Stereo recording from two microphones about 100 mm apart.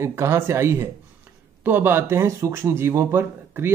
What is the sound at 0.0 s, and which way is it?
Speech, 25° right (ahead or behind).